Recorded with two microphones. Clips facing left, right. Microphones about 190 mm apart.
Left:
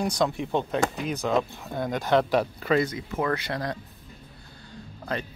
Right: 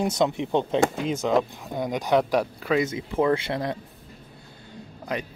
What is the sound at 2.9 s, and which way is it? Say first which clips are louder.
Speech: right 5 dB; 25° right (ahead or behind).